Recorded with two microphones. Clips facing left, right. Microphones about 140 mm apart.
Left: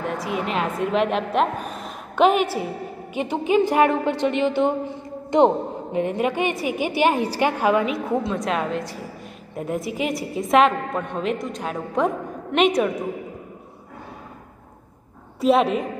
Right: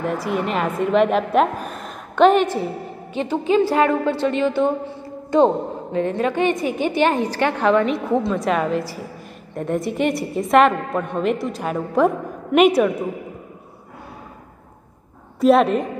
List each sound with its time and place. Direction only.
0.0 s a woman's voice: centre (ahead or behind)
15.4 s a woman's voice: centre (ahead or behind)